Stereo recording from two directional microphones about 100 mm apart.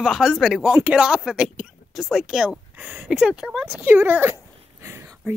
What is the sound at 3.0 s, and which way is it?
Speech, 5° right (ahead or behind).